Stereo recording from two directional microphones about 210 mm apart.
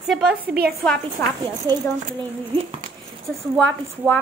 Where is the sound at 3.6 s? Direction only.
10° left (ahead or behind).